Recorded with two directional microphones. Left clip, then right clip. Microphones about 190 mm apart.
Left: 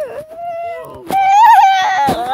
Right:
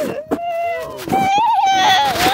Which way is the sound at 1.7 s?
5° left (ahead or behind).